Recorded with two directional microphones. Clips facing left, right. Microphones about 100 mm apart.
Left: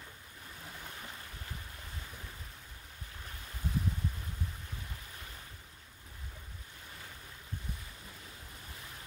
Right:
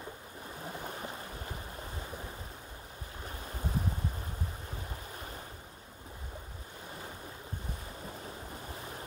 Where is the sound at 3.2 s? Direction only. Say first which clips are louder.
Right 7 dB; 30° right (ahead or behind).